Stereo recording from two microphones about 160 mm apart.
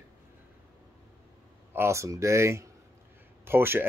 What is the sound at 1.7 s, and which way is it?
Speech, 15° right (ahead or behind).